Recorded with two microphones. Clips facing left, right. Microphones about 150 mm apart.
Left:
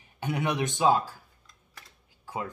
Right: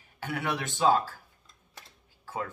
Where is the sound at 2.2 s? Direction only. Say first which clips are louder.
Left 1 dB; 15° left (ahead or behind).